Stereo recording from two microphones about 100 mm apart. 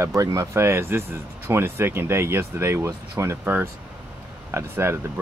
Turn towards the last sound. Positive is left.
turn(degrees=-25)  # may be behind; listen again after turning